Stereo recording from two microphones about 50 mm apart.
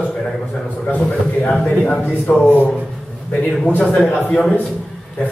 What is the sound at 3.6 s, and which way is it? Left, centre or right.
Speech, left.